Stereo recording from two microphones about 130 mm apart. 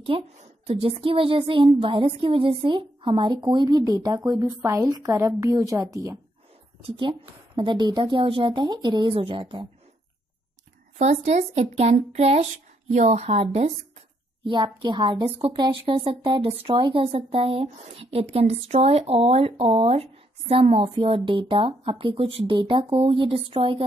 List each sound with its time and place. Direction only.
0.1 s a woman's voice: 45° right (ahead or behind); by 5.9 s 25° right (ahead or behind)
7.0 s a woman's voice: 40° right (ahead or behind)
11.0 s speech: 60° right (ahead or behind)
14.4 s a woman's voice: 35° right (ahead or behind)